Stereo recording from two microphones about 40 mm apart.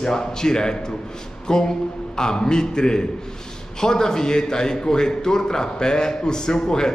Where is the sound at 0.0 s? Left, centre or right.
Centre.